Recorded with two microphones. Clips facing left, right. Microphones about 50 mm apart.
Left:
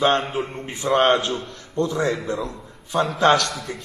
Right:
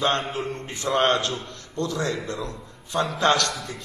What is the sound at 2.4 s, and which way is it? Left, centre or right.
A man's voice, centre.